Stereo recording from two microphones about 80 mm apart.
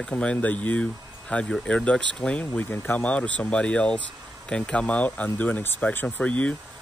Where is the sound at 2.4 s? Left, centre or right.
Left.